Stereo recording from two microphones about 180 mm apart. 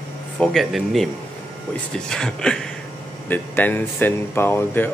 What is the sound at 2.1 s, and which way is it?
Speech, 5° left (ahead or behind).